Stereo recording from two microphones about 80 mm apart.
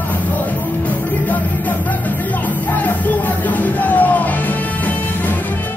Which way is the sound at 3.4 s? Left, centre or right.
Left.